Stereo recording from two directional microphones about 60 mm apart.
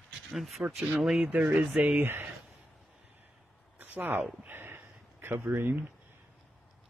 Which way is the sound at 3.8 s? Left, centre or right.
Right.